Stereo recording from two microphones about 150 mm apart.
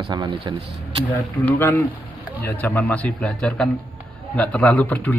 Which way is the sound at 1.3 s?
10° left (ahead or behind).